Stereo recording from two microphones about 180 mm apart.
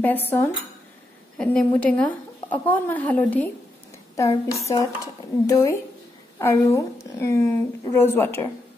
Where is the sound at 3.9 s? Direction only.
15° left (ahead or behind).